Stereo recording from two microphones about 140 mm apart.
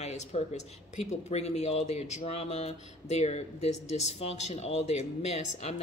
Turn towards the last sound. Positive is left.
turn(degrees=50)  # may be behind; listen again after turning